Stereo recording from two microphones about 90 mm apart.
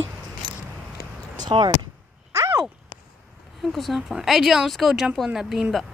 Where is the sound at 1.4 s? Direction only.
55° right (ahead or behind).